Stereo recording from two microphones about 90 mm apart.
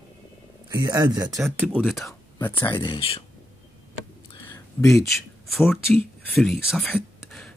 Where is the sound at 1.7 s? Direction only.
Centre (ahead or behind).